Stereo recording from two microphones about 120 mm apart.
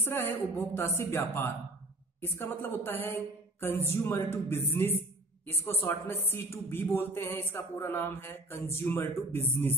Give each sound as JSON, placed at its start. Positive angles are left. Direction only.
{"t": 0.0, "sound": "a woman's voice", "side_deg": 20}